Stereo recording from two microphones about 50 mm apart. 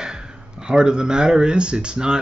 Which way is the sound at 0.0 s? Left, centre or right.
Centre.